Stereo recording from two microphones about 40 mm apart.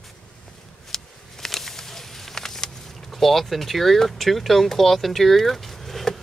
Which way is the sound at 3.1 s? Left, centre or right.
Centre.